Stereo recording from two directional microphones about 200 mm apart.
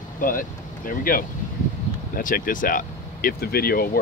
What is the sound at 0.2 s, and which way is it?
Speech, 45° left (ahead or behind).